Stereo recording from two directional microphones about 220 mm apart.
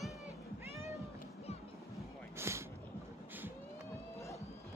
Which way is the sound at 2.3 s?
10° right (ahead or behind).